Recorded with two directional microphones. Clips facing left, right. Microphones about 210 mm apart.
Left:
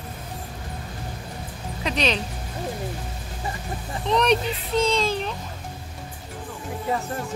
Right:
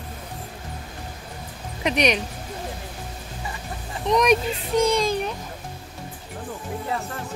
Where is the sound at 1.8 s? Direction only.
15° right (ahead or behind).